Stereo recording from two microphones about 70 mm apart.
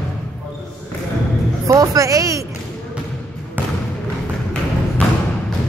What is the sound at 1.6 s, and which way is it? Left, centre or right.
Speech, right.